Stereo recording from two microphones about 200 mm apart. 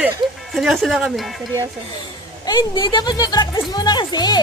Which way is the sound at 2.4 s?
20° left (ahead or behind).